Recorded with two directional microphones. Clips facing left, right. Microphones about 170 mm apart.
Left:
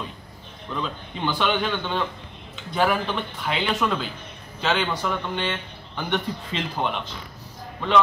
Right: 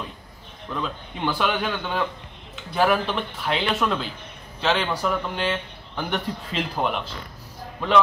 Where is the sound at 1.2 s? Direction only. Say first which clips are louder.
Even; 5° right (ahead or behind).